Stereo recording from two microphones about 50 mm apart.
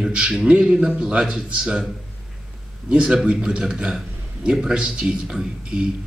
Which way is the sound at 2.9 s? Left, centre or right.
Right.